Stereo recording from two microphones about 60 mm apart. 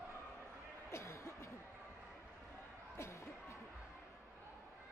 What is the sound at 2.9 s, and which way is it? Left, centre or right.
Music, left.